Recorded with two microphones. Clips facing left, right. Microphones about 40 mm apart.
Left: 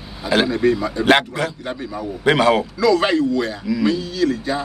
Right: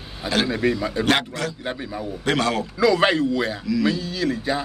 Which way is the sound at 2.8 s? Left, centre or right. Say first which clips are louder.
Left 2 dB; centre.